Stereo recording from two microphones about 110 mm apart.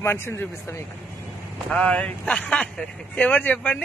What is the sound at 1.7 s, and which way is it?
Speech, 10° left (ahead or behind).